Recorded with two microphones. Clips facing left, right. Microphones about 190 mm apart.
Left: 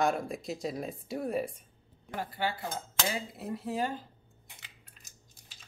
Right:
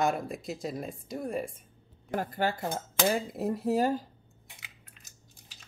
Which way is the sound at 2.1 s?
45° right (ahead or behind).